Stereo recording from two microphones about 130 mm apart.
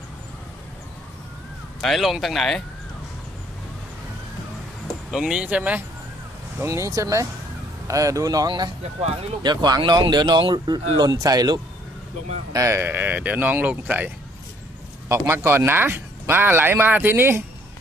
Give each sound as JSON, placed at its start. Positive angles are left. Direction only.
{"t": 1.8, "sound": "speech", "side_deg": 0}
{"t": 5.1, "sound": "speech", "side_deg": -5}
{"t": 12.5, "sound": "speech", "side_deg": -20}